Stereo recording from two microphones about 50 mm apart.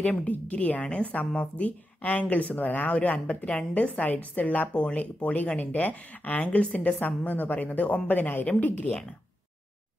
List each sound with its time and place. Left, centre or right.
0.0 s a woman's voice: left